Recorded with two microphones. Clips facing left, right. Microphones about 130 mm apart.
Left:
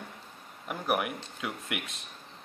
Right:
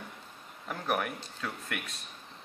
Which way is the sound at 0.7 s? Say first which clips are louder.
Left 2 dB; 10° left (ahead or behind).